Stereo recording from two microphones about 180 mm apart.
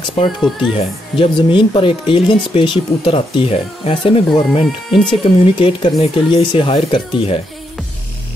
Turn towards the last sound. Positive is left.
turn(degrees=30)  # may be behind; listen again after turning